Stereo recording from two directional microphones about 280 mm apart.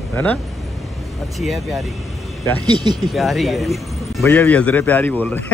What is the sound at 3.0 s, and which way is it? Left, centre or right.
Speech, centre.